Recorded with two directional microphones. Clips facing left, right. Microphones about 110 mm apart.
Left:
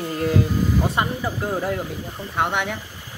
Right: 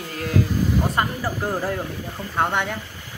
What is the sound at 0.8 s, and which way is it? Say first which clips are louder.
Speech: even; centre (ahead or behind).